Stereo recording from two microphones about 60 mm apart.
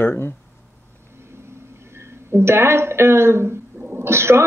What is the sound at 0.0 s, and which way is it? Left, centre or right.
Speech, left.